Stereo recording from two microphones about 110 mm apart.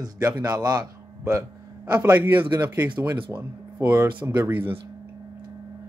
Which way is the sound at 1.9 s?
15° right (ahead or behind).